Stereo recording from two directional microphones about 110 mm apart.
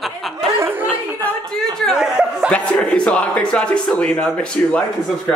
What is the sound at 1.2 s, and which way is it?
A woman's voice, 10° left (ahead or behind).